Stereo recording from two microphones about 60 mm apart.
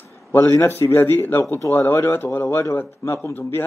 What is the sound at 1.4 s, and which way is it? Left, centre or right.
A man's voice, left.